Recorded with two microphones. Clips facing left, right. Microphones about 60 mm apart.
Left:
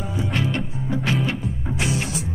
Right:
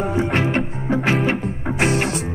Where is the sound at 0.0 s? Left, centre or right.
Right.